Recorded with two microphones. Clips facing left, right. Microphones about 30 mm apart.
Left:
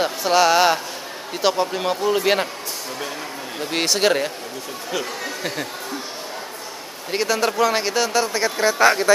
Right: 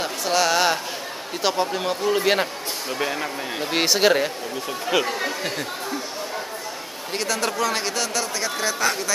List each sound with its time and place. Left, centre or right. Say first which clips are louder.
0.0 s speech: left 4 dB; centre
3.0 s speech: right 4 dB; right
3.7 s speech: even; centre
4.9 s speech: right 4 dB; centre
7.1 s speech: left 4 dB; centre